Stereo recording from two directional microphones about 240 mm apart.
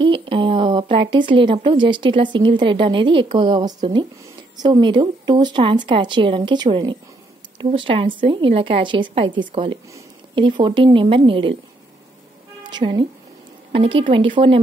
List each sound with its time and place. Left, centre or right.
0.0 s speech: right
12.7 s speech: centre